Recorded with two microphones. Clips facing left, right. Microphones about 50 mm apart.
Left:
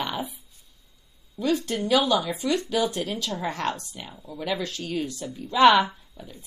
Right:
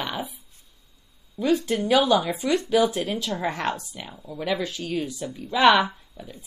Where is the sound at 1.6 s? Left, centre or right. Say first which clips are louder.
Right 2 dB; centre.